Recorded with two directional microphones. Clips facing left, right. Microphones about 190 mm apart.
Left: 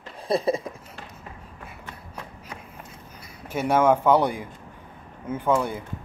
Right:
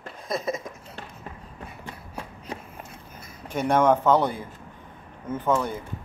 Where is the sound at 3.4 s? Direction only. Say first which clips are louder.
Even; 5° left (ahead or behind).